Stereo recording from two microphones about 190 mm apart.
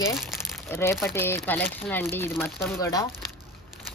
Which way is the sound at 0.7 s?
15° left (ahead or behind).